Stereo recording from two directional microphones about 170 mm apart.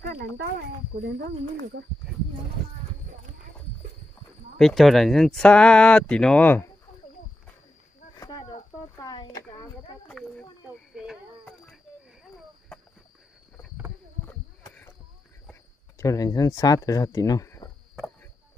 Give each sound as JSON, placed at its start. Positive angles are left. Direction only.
{"t": 0.0, "sound": "speech", "side_deg": -75}
{"t": 1.0, "sound": "speech", "side_deg": -90}
{"t": 4.6, "sound": "speech", "side_deg": 0}
{"t": 8.2, "sound": "cricket", "side_deg": 20}
{"t": 8.9, "sound": "a sound", "side_deg": 25}
{"t": 10.0, "sound": "a sound", "side_deg": 5}
{"t": 14.2, "sound": "walk", "side_deg": 5}
{"t": 16.0, "sound": "speech", "side_deg": 20}